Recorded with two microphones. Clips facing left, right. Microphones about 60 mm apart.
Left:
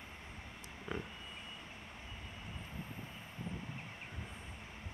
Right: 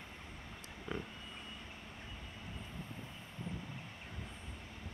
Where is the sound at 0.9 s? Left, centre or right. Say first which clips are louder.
Even; centre.